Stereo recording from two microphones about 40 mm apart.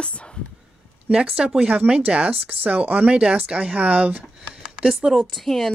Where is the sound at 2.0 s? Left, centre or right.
Right.